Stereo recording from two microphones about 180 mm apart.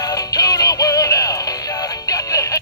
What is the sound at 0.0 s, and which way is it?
Music, 20° left (ahead or behind).